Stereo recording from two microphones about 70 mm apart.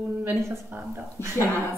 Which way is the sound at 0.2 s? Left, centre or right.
Right.